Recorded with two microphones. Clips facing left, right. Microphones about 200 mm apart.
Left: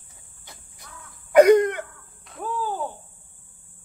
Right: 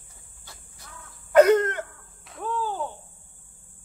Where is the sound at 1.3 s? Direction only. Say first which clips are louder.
Left 3 dB; 15° left (ahead or behind).